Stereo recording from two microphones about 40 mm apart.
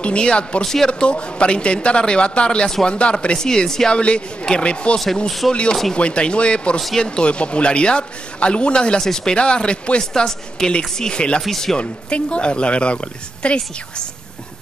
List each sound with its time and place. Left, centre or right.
0.0 s speech: left
3.4 s speech: centre
3.9 s speech: left
4.9 s speech: centre
11.4 s speech: centre
11.8 s speech: left